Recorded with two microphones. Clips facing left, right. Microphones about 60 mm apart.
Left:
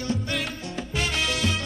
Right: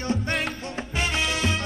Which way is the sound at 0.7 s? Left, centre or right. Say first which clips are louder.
Left 1 dB; right.